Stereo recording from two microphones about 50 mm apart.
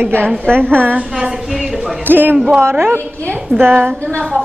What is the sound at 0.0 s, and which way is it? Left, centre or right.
Speech, right.